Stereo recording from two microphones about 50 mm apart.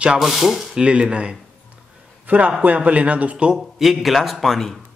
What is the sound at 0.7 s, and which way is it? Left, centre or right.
Speech, centre.